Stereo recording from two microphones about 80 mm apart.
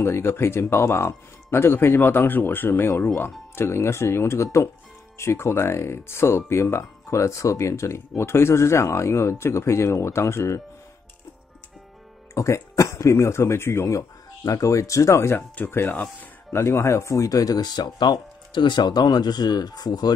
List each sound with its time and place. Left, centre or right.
0.0 s speech: left
12.4 s speech: left
16.4 s speech: left